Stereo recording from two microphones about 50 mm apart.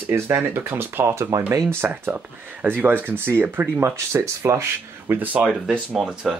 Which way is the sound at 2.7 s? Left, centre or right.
Right.